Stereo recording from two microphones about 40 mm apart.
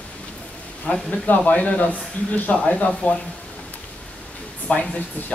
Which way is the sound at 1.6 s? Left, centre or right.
Left.